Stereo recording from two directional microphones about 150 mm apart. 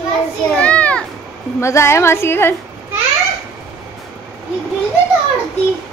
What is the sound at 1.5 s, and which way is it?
A woman's voice, 20° left (ahead or behind).